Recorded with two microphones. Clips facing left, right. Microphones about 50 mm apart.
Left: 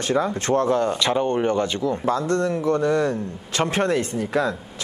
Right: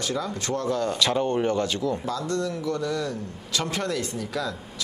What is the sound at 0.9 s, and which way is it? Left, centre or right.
Speech, centre.